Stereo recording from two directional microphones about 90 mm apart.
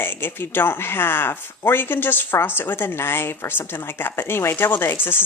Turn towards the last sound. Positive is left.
turn(degrees=25)  # may be behind; listen again after turning